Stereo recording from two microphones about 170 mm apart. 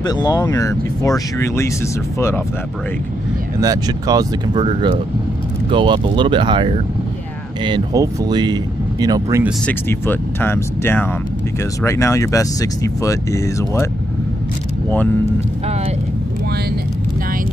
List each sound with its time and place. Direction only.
0.0 s speech: 25° left (ahead or behind)
3.6 s speech: 20° right (ahead or behind)
9.7 s speech: 10° left (ahead or behind)